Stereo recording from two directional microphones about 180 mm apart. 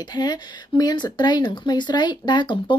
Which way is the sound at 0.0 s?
25° left (ahead or behind).